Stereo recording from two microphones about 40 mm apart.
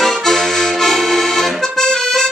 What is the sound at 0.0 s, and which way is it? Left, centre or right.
Accordion, centre.